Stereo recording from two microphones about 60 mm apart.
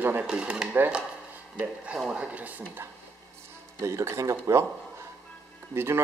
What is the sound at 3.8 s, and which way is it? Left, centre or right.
Speech, right.